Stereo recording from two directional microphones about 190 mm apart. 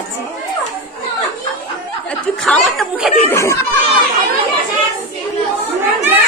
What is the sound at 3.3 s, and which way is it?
Speech, 15° left (ahead or behind).